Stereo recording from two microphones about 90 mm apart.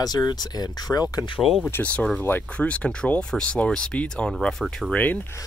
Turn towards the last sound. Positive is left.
turn(degrees=5)  # may be behind; listen again after turning